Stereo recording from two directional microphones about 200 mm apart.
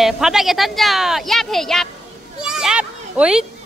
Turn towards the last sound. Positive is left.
turn(degrees=-5)  # may be behind; listen again after turning